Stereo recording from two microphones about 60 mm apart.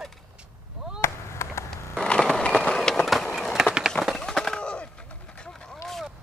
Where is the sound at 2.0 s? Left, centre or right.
Centre.